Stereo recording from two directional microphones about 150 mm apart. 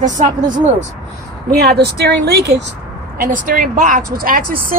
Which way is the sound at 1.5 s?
90° right.